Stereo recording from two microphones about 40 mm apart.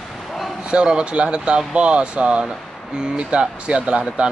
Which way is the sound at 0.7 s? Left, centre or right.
Right.